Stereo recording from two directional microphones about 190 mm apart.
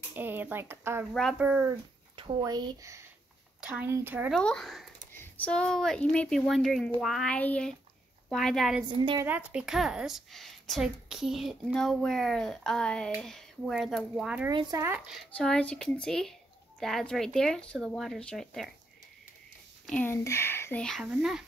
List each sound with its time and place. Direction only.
0.1 s speech: 10° right (ahead or behind)
2.1 s speech: 25° right (ahead or behind)
4.4 s a woman's voice: 5° left (ahead or behind)
14.5 s speech: 20° right (ahead or behind)
15.0 s a woman's voice: 5° left (ahead or behind)
19.9 s speech: 10° left (ahead or behind)